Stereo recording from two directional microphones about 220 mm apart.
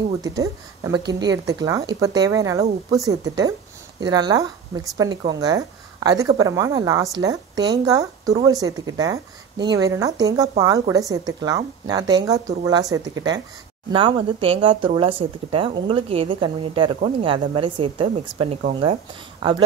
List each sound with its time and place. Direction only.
0.2 s a woman's voice: 15° right (ahead or behind)